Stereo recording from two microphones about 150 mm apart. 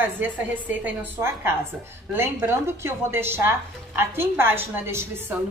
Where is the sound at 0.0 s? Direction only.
10° right (ahead or behind).